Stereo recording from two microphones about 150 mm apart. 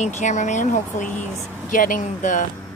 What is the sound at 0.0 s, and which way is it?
Speech, 55° left (ahead or behind).